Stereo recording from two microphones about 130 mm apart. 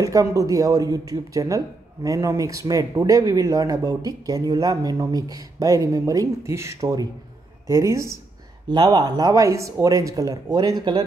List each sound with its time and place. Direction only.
0.0 s speech: 25° right (ahead or behind)
8.6 s speech: 35° right (ahead or behind)